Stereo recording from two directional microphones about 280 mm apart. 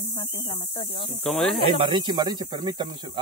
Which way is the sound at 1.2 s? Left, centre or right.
Centre.